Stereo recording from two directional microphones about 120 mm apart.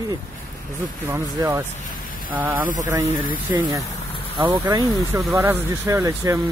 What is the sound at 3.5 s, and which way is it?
Speech, 25° right (ahead or behind).